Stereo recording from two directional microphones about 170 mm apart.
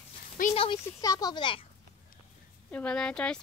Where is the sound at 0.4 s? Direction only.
55° left (ahead or behind).